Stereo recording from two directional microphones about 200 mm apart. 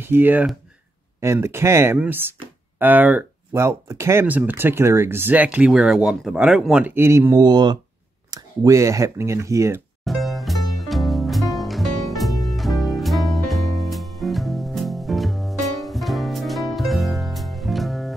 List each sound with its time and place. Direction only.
0.0 s speech: 10° right (ahead or behind)
10.0 s music: centre (ahead or behind)